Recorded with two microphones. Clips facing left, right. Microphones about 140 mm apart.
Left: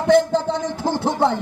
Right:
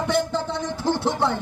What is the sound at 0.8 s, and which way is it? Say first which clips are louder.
Music: left 3 dB; 45° left (ahead or behind).